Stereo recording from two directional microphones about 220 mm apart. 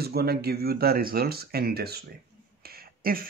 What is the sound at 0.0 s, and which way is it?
Speech, 45° right (ahead or behind).